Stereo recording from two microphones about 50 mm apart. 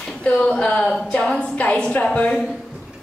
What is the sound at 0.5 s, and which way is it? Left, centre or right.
A woman's voice, centre.